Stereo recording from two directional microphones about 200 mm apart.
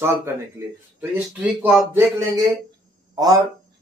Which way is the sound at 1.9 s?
15° right (ahead or behind).